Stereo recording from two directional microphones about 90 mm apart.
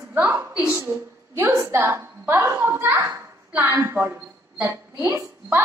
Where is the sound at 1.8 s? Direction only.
25° right (ahead or behind).